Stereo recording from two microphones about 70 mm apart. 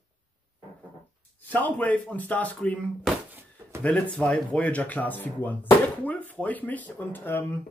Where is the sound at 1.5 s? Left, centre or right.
Left.